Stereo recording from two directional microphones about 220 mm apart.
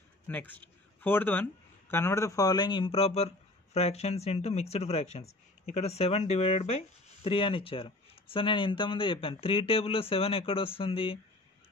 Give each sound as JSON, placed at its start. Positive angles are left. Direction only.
{"t": 0.3, "sound": "a man's voice", "side_deg": 10}